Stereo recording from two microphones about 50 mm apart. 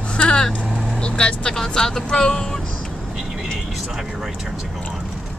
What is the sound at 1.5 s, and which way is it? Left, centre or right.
Speech, centre.